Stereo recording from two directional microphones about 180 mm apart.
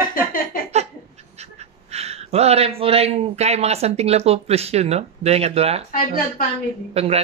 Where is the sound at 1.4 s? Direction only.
35° right (ahead or behind).